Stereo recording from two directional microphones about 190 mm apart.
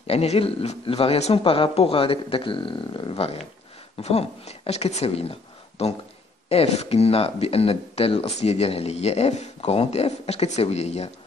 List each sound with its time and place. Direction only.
0.0 s a man's voice: 30° left (ahead or behind)